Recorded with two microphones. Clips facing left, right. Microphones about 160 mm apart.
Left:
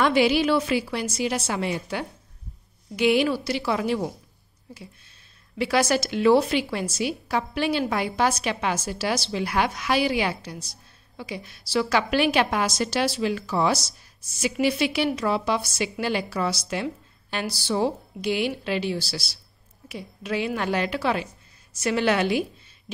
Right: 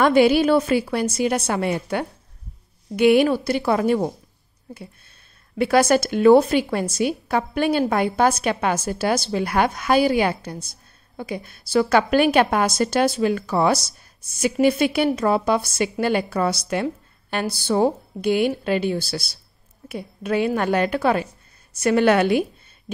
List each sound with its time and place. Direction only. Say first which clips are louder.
0.0 s a woman's voice: right 5 dB; 50° right (ahead or behind)
5.6 s a woman's voice: right 5 dB; 50° right (ahead or behind)